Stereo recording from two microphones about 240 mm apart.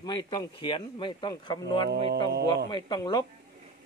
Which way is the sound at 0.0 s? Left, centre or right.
Centre.